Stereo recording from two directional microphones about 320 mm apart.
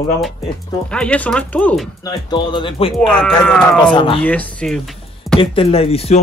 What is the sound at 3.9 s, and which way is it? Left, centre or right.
Speech, centre.